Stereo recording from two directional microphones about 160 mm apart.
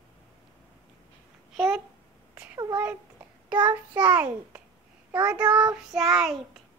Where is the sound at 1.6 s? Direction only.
Centre (ahead or behind).